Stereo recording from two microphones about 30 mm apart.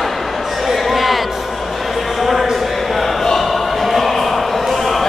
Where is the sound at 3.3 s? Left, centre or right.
Centre.